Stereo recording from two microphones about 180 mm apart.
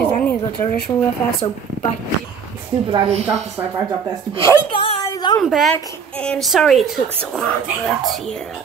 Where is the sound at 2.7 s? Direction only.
30° right (ahead or behind).